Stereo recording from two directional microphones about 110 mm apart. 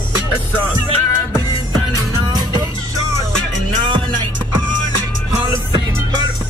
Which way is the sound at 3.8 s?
45° right (ahead or behind).